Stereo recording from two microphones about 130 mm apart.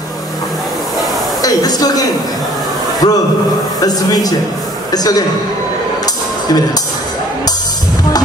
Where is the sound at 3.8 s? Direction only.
30° left (ahead or behind).